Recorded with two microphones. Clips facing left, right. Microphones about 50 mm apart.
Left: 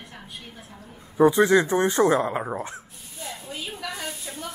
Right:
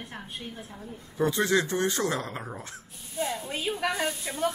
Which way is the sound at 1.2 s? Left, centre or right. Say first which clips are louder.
Left 8 dB; centre.